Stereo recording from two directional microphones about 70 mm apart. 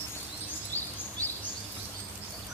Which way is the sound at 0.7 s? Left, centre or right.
Left.